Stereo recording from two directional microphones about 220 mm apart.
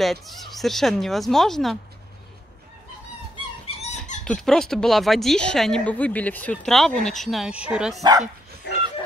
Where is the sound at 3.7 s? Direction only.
30° left (ahead or behind).